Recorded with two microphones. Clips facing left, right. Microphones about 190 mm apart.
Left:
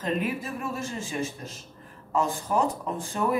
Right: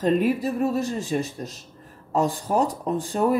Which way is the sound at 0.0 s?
35° right (ahead or behind).